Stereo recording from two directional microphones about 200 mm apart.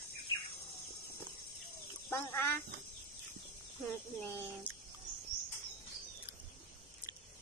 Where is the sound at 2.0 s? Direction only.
10° left (ahead or behind).